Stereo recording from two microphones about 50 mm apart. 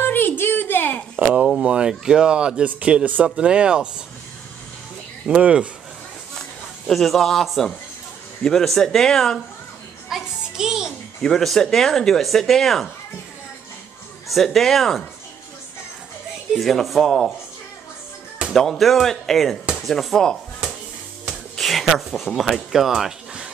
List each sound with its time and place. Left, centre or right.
0.0 s a sound: left
1.3 s speech: centre
5.3 s speech: right
6.9 s speech: centre
10.0 s music: centre
11.1 s speech: centre
14.3 s speech: centre
16.5 s speech: centre
18.5 s speech: centre
21.5 s a sound: centre
21.8 s speech: centre
22.7 s a sound: centre